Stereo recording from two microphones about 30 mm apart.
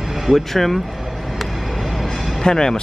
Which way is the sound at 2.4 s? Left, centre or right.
Left.